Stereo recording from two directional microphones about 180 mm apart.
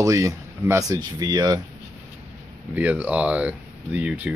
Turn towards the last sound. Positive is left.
turn(degrees=-10)  # may be behind; listen again after turning